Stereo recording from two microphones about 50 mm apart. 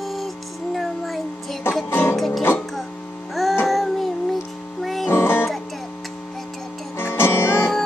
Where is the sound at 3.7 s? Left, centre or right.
Centre.